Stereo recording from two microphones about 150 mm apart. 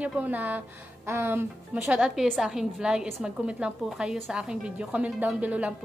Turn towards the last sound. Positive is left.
turn(degrees=-10)  # may be behind; listen again after turning